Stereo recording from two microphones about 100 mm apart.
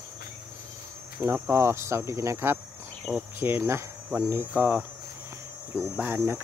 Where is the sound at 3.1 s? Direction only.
5° right (ahead or behind).